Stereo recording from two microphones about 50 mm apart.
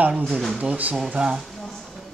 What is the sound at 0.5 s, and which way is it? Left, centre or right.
Speech, right.